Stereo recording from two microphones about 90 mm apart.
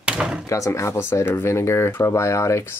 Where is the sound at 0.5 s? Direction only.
35° left (ahead or behind).